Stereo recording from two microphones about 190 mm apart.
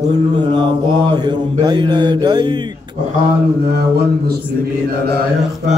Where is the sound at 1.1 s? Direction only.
20° right (ahead or behind).